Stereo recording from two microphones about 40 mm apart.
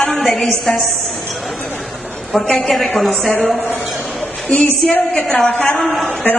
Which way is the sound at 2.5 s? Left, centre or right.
Centre.